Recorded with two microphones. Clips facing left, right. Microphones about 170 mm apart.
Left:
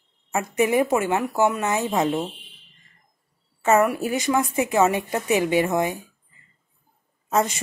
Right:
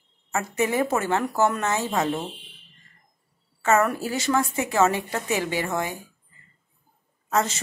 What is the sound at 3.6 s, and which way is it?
Speech, 15° left (ahead or behind).